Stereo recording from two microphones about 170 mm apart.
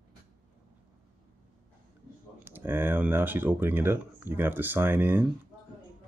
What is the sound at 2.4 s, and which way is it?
Speech, 10° right (ahead or behind).